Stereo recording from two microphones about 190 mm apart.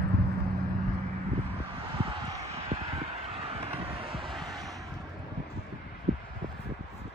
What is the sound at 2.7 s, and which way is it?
Vehicle, 30° right (ahead or behind).